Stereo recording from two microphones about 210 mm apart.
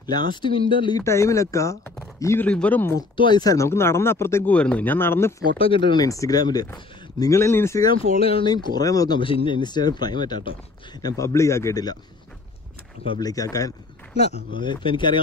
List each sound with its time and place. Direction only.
0.0 s speech: 20° left (ahead or behind)
3.0 s speech: 20° left (ahead or behind)
5.6 s speech: 25° left (ahead or behind)
8.2 s speech: 25° left (ahead or behind)
13.0 s speech: 15° left (ahead or behind)
14.1 s speech: 30° left (ahead or behind)